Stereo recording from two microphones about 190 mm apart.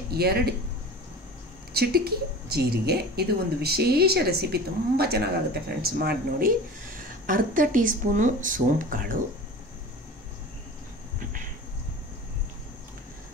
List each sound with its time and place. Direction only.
0.1 s a woman's voice: 55° right (ahead or behind)
1.7 s a woman's voice: 55° right (ahead or behind)